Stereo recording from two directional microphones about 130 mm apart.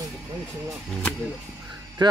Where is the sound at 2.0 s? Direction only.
35° right (ahead or behind).